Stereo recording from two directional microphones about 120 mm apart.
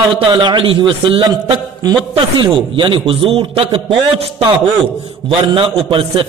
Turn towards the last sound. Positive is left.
turn(degrees=-50)  # may be behind; listen again after turning